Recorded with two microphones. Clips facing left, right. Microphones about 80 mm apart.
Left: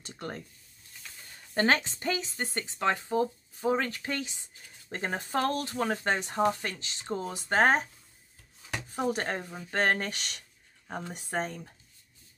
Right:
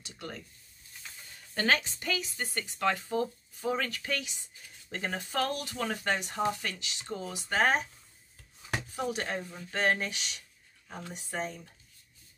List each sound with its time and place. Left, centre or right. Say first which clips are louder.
0.0 s a sound: left 4 dB; left
1.5 s speech: left 3 dB; left
8.9 s speech: left 4 dB; left
10.9 s speech: left 5 dB; left
11.1 s speech: left 2 dB; left